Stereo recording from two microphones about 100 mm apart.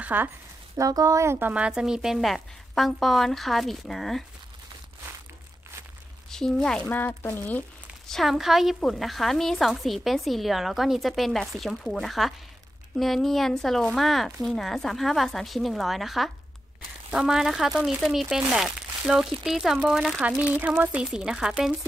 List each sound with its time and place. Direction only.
0.0 s speech: 15° right (ahead or behind)
0.7 s speech: 35° right (ahead or behind)
1.5 s a woman's voice: 10° right (ahead or behind)
6.3 s speech: 5° left (ahead or behind)
6.9 s speech: 20° left (ahead or behind)
8.1 s a woman's voice: centre (ahead or behind)
20.2 s speech: 15° right (ahead or behind)
21.0 s speech: 5° right (ahead or behind)